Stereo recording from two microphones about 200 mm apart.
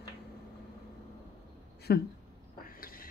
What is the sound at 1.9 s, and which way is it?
Speech, 55° left (ahead or behind).